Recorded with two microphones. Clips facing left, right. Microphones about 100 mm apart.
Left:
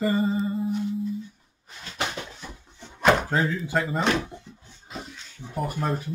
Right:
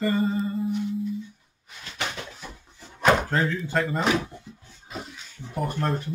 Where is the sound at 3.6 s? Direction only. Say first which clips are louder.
Even; 5° left (ahead or behind).